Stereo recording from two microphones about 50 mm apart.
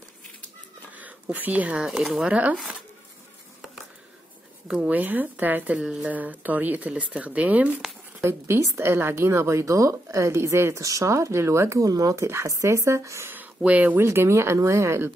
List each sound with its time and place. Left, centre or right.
0.9 s a sound: right
1.8 s speech: centre
4.8 s speech: right
5.8 s speech: right
6.1 s speech: right
6.9 s speech: right
8.2 s a woman's voice: right
13.6 s speech: right
13.9 s a woman's voice: right